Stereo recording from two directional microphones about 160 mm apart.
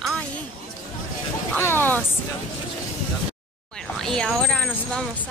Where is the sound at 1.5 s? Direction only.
15° left (ahead or behind).